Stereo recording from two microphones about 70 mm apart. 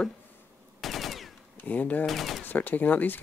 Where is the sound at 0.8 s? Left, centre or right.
Centre.